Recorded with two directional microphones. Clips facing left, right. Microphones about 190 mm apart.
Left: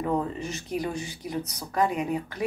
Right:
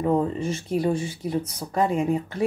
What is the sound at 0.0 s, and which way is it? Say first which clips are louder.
Speech: right 5 dB; 25° right (ahead or behind).